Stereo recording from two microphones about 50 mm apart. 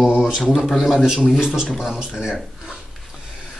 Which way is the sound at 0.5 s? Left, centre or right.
Centre.